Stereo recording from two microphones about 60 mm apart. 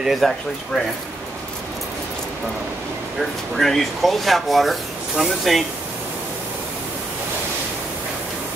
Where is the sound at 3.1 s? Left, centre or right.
Centre.